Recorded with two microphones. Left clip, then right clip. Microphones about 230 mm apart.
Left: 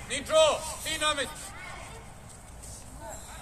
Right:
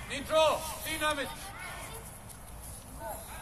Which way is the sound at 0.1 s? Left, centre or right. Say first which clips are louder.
Left 4 dB; left.